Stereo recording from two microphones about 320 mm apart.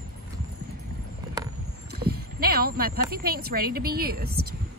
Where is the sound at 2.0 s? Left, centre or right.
Right.